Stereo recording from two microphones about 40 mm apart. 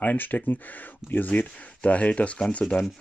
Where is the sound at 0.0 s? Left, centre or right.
Left.